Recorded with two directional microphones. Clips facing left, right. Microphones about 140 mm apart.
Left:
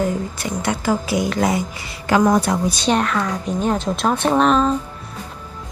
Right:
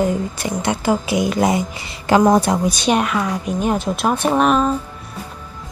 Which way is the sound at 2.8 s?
10° right (ahead or behind).